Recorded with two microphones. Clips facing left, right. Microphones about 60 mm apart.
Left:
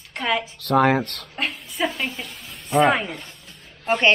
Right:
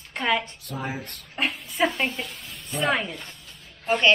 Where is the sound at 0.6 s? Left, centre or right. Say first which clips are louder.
Left 15 dB; left.